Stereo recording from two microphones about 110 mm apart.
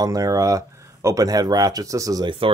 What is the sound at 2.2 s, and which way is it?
Speech, 55° right (ahead or behind).